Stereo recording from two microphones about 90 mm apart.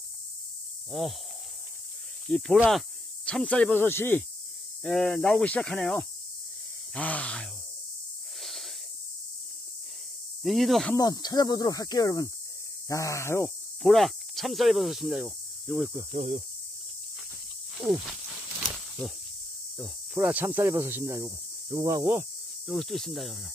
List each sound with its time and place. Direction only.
0.9 s speech: centre (ahead or behind)
2.2 s speech: 5° left (ahead or behind)
3.7 s speech: 25° left (ahead or behind)
4.8 s speech: centre (ahead or behind)
8.4 s wheeze: centre (ahead or behind)
10.4 s speech: centre (ahead or behind)
11.0 s speech: 45° left (ahead or behind); by 13.5 s 30° left (ahead or behind)
13.8 s speech: centre (ahead or behind)
15.0 s cricket: 10° right (ahead or behind)
17.8 s a sound: 5° right (ahead or behind)
20.2 s speech: 20° right (ahead or behind)
22.7 s speech: centre (ahead or behind)